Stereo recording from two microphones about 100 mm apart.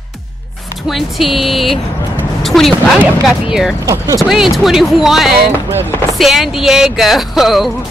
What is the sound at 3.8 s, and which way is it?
Speech, 35° right (ahead or behind).